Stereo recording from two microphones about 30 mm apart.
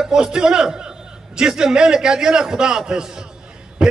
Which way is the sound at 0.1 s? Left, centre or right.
Right.